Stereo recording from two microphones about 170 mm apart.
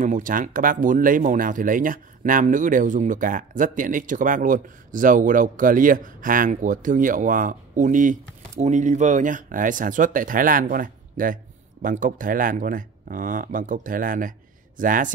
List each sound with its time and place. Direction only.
0.0 s speech: 50° right (ahead or behind)